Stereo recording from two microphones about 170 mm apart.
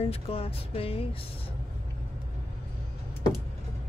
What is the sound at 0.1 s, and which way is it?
Speech, 35° left (ahead or behind).